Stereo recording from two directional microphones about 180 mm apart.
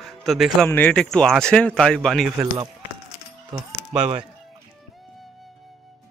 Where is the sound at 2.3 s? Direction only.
20° right (ahead or behind).